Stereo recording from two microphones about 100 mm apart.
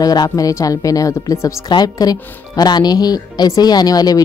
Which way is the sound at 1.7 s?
45° left (ahead or behind).